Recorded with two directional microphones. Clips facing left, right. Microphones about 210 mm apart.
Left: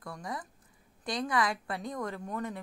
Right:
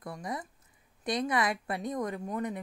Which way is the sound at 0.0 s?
20° right (ahead or behind).